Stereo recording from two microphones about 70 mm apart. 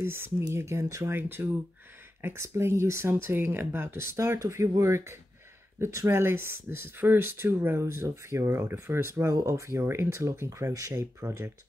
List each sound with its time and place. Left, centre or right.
0.0 s speech: right
1.1 s speech: right
4.4 s speech: right
10.6 s speech: right